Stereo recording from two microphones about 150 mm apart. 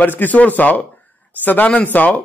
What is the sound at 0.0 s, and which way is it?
Speech, 10° left (ahead or behind).